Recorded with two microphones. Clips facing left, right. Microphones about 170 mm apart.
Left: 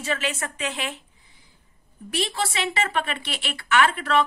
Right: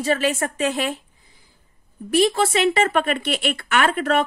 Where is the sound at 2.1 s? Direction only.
45° right (ahead or behind).